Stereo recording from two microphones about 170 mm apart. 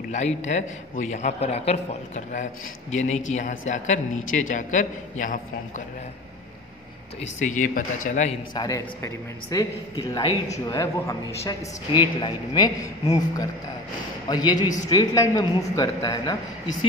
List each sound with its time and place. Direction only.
0.1 s speech: 45° left (ahead or behind)
7.2 s speech: 45° left (ahead or behind)
8.5 s a man's voice: 20° left (ahead or behind)